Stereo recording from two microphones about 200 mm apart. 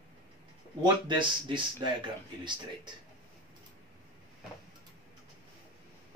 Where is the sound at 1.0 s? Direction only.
25° right (ahead or behind).